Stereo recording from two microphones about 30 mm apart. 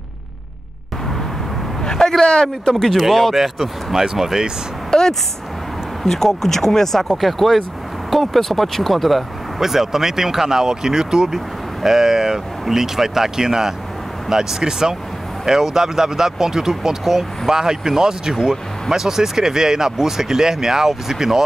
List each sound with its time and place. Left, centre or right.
1.8 s a sound: centre
2.2 s speech: left
2.7 s speech: centre
3.1 s speech: centre
3.9 s speech: centre
4.9 s a sound: centre
6.0 s speech: centre
9.6 s speech: centre